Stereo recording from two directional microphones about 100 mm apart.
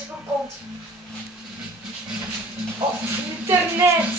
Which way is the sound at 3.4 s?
25° right (ahead or behind).